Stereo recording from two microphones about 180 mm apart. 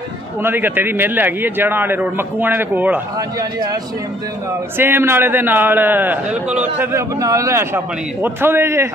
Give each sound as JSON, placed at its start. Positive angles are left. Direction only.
{"t": 0.4, "sound": "a man's voice", "side_deg": -10}
{"t": 3.2, "sound": "a man's voice", "side_deg": -20}
{"t": 4.7, "sound": "a man's voice", "side_deg": -10}